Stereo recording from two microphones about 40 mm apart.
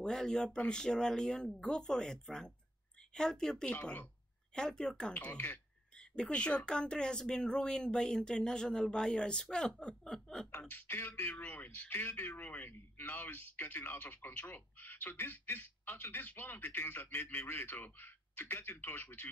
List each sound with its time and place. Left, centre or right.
0.0 s chuckle: centre
0.7 s speech: centre
3.2 s chuckle: centre
3.8 s speech: left
4.6 s speech: centre
9.8 s chuckle: left
10.7 s speech: left
11.3 s a man's voice: left